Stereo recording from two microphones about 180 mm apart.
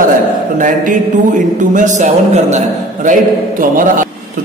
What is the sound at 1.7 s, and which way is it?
Speech, 40° right (ahead or behind).